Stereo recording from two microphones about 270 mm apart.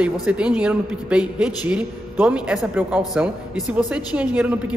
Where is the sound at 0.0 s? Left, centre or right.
Centre.